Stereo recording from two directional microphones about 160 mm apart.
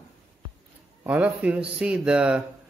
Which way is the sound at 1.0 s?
10° right (ahead or behind).